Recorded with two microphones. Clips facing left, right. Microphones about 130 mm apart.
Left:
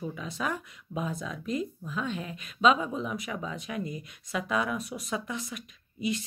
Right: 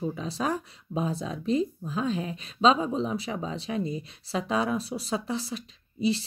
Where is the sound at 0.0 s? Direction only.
30° right (ahead or behind).